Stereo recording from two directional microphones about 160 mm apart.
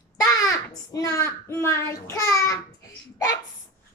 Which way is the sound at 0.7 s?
20° left (ahead or behind).